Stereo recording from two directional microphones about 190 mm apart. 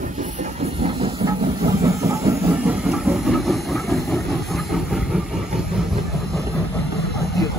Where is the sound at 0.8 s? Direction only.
30° right (ahead or behind).